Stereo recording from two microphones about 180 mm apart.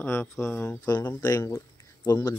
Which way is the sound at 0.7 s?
25° left (ahead or behind).